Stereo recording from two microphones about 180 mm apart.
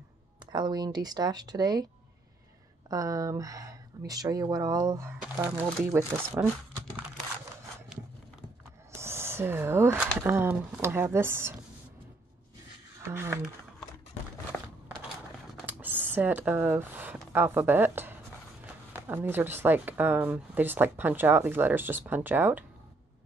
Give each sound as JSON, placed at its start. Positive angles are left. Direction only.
{"t": 0.5, "sound": "speech", "side_deg": -20}
{"t": 2.9, "sound": "speech", "side_deg": -20}
{"t": 7.9, "sound": "a sound", "side_deg": -5}
{"t": 8.9, "sound": "speech", "side_deg": -15}
{"t": 13.0, "sound": "speech", "side_deg": -15}
{"t": 15.6, "sound": "speech", "side_deg": -10}